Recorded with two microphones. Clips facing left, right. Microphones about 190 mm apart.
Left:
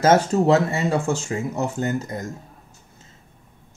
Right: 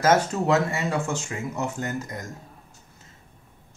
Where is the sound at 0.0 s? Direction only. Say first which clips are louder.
Left 4 dB; 30° left (ahead or behind).